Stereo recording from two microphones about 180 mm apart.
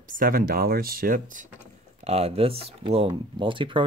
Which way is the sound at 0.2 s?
55° right (ahead or behind).